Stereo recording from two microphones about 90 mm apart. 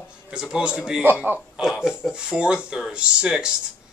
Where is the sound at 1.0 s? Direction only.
20° right (ahead or behind).